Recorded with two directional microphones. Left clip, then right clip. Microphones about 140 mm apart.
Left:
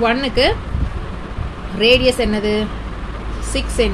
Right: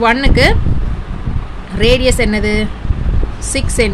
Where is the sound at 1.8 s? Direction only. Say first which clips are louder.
Right 1 dB; 50° right (ahead or behind).